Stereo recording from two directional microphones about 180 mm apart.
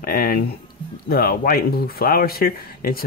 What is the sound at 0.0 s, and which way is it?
Speech, 55° left (ahead or behind).